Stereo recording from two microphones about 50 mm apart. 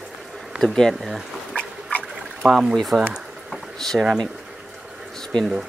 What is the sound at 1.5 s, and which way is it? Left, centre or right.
Pig, left.